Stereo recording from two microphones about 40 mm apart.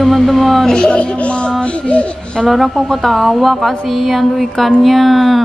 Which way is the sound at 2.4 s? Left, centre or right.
Centre.